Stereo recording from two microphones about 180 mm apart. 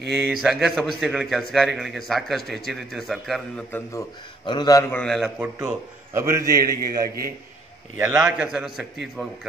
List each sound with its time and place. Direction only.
0.1 s a man's voice: centre (ahead or behind)
4.5 s a man's voice: 20° left (ahead or behind); by 5.5 s centre (ahead or behind)
5.6 s a man's voice: 15° right (ahead or behind)
6.5 s a man's voice: 55° right (ahead or behind)
8.0 s a man's voice: 10° right (ahead or behind)